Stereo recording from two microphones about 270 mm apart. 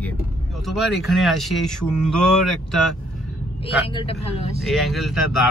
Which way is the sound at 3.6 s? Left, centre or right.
Centre.